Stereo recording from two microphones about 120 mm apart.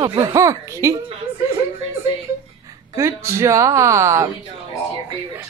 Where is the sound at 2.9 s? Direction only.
25° right (ahead or behind).